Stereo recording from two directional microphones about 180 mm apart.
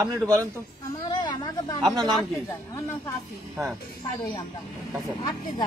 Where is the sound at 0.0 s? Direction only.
15° right (ahead or behind).